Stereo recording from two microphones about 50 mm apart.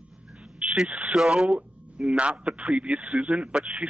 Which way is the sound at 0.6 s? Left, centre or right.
Right.